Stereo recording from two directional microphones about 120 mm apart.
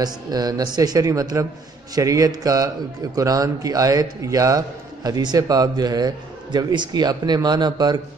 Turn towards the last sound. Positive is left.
turn(degrees=-35)  # may be behind; listen again after turning